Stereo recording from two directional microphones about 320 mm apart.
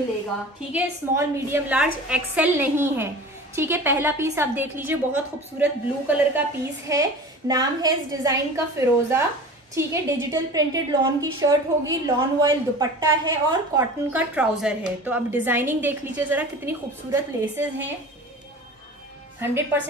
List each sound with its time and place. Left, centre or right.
0.7 s a woman's voice: centre
19.4 s a woman's voice: centre